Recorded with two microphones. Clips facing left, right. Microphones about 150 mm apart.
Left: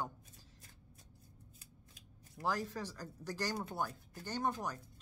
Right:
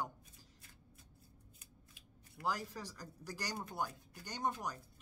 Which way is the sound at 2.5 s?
10° right (ahead or behind).